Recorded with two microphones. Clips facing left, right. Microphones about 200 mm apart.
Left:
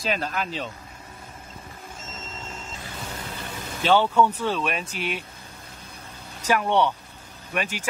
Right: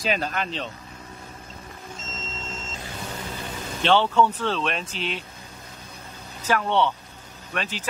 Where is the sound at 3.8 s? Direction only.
10° left (ahead or behind).